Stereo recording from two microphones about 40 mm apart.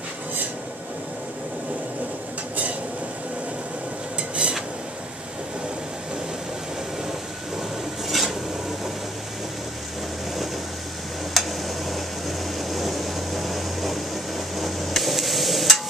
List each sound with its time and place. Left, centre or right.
4.2 s stir: right
8.1 s stir: centre
11.3 s a sound: centre